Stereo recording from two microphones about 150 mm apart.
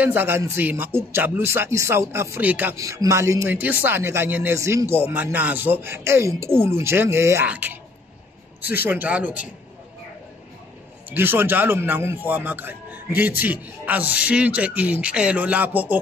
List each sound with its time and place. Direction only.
0.0 s speech: 15° right (ahead or behind)
8.8 s speech: 10° right (ahead or behind)
11.1 s speech: 15° right (ahead or behind)